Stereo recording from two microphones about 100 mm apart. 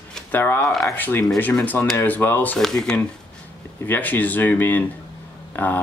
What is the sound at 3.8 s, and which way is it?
Speech, 20° left (ahead or behind).